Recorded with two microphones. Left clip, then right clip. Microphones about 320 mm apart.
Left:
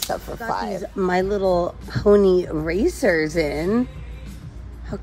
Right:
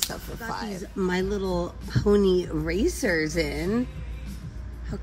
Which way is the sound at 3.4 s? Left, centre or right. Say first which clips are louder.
Left 6 dB; left.